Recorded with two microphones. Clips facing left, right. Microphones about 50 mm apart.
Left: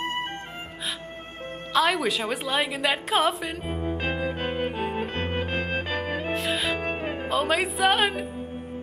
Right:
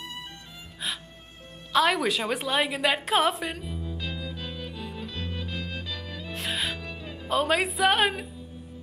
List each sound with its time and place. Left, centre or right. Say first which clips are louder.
0.0 s music: left 10 dB; left
1.7 s a woman's voice: even; centre
3.6 s music: left 8 dB; left
6.3 s music: left 2 dB; centre
6.8 s music: left 10 dB; left
7.2 s a woman's voice: right 1 dB; centre